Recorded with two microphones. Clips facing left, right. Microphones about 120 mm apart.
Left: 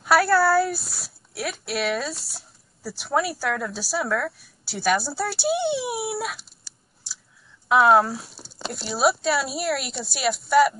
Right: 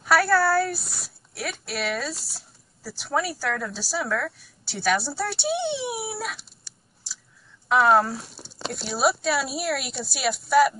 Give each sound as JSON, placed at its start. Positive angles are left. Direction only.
{"t": 0.0, "sound": "a woman's voice", "side_deg": 0}